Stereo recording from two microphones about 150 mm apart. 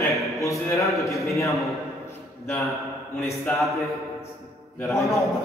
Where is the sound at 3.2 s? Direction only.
15° left (ahead or behind).